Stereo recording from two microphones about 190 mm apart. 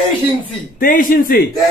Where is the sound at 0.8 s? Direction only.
45° left (ahead or behind).